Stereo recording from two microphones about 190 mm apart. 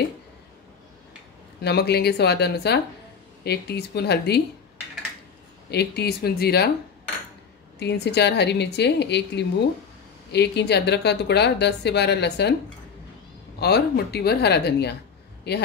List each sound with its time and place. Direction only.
1.6 s a woman's voice: 60° left (ahead or behind)
5.7 s a woman's voice: 60° left (ahead or behind)
7.8 s a woman's voice: 60° left (ahead or behind)
13.6 s a woman's voice: 60° left (ahead or behind)